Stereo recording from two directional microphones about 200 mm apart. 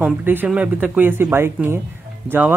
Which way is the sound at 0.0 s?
10° right (ahead or behind).